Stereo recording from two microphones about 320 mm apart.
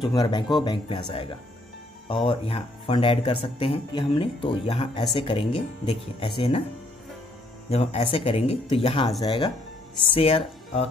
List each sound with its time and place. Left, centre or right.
0.0 s speech: centre
7.7 s speech: centre